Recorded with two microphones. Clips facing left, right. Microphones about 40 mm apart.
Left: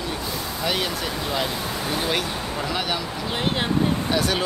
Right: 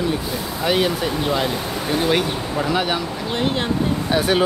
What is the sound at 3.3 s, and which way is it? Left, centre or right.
Speech, centre.